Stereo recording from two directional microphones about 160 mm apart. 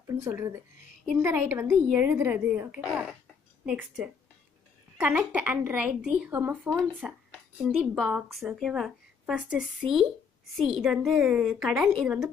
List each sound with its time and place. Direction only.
0.0 s a woman's voice: 20° right (ahead or behind)
4.9 s a woman's voice: 5° right (ahead or behind)
7.2 s a woman's voice: centre (ahead or behind)